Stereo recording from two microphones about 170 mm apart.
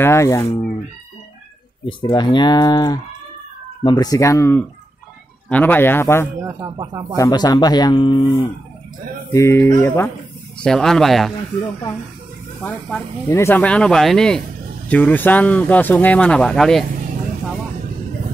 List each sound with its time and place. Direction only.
0.0 s speech: 15° left (ahead or behind)
1.9 s speech: 30° left (ahead or behind)
6.5 s speech: 25° right (ahead or behind)
7.2 s speech: 20° left (ahead or behind)
9.3 s speech: 15° left (ahead or behind)
10.6 s speech: 5° left (ahead or behind)
12.6 s speech: 10° left (ahead or behind)